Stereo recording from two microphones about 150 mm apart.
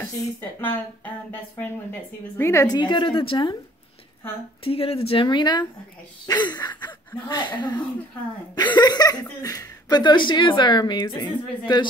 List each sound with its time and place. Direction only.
0.0 s speech: 15° left (ahead or behind)
2.3 s a woman's voice: 20° left (ahead or behind); by 3.5 s 35° left (ahead or behind)
4.6 s a woman's voice: 40° left (ahead or behind)